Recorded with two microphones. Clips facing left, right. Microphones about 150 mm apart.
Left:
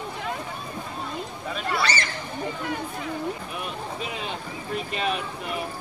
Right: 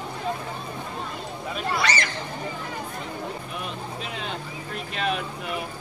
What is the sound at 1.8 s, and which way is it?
Speech, 30° left (ahead or behind).